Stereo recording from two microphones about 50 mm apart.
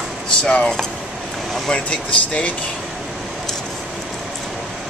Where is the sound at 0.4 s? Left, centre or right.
Centre.